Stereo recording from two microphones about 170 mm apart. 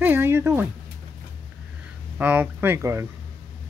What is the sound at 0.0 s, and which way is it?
Speech, 10° right (ahead or behind).